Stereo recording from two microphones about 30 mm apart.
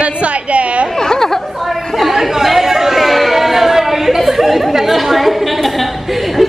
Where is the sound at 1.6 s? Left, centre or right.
Centre.